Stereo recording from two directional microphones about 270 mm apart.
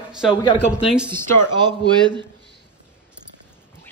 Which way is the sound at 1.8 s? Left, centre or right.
Centre.